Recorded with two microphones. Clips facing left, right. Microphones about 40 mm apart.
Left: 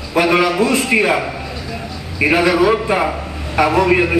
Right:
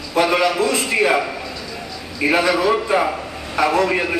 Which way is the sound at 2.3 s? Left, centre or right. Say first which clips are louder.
Left 3 dB; centre.